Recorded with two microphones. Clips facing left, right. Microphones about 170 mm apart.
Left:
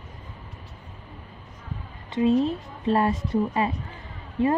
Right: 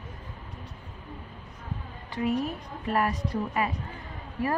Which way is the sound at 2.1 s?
25° left (ahead or behind).